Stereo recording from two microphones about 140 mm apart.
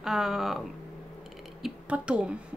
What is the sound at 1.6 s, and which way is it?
Speech, 5° right (ahead or behind).